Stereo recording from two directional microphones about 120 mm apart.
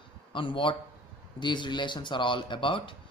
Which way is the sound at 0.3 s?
45° left (ahead or behind).